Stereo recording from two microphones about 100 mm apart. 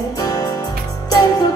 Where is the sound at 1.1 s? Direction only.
45° left (ahead or behind).